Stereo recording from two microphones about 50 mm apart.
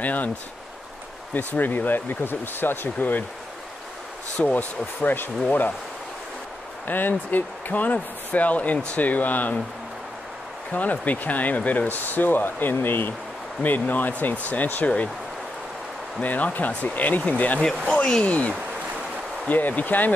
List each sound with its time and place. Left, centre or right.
0.0 s speech: left
1.3 s speech: left
4.4 s speech: left
6.9 s speech: left
10.7 s speech: left
16.2 s speech: left
19.5 s speech: left